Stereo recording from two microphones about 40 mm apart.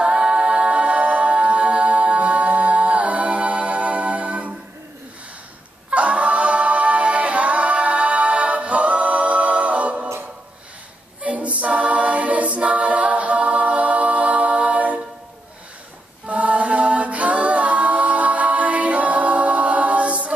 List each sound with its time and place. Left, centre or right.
0.0 s a capella: right
5.9 s singing: right
11.2 s a capella: right
16.3 s a capella: right